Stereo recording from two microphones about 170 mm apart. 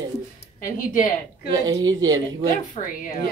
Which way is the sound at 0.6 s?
55° left (ahead or behind).